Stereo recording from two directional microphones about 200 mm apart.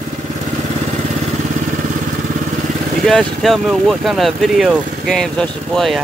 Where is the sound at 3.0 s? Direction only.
Centre (ahead or behind).